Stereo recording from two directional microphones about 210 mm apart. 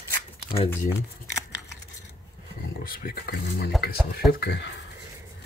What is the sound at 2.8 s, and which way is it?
Speech, 45° left (ahead or behind).